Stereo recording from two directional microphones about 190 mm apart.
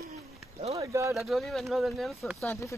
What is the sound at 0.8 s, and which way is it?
Speech, 15° right (ahead or behind).